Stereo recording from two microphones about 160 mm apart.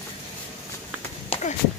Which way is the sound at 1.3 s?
35° left (ahead or behind).